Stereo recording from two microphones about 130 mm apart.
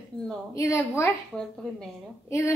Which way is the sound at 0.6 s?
20° left (ahead or behind).